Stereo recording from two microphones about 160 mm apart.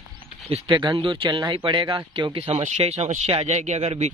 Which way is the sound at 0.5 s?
35° right (ahead or behind).